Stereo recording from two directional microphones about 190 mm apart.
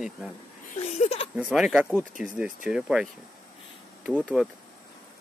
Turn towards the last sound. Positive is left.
turn(degrees=-5)  # may be behind; listen again after turning